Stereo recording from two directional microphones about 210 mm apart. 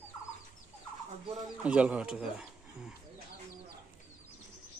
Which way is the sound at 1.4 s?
5° right (ahead or behind).